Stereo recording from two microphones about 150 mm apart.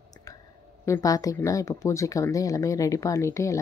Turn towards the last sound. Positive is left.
turn(degrees=20)  # may be behind; listen again after turning